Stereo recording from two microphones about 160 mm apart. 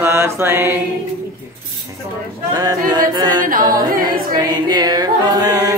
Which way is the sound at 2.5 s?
25° right (ahead or behind).